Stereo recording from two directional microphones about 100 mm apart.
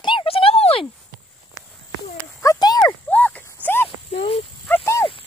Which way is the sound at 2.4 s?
40° left (ahead or behind).